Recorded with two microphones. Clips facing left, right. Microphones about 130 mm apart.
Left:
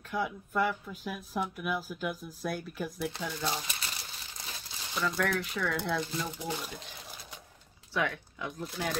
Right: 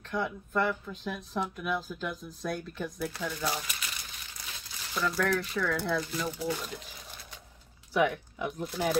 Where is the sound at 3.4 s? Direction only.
35° left (ahead or behind).